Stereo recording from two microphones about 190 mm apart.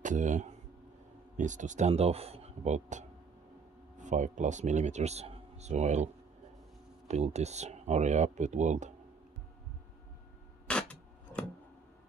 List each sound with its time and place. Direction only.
0.0 s speech: 40° right (ahead or behind)
7.1 s speech: 35° right (ahead or behind)
10.7 s a sound: 5° left (ahead or behind)